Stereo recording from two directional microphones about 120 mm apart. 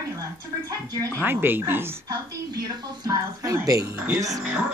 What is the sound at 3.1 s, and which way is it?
A woman's voice, 30° right (ahead or behind).